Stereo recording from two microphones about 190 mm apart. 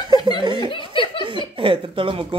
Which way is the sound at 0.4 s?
25° right (ahead or behind).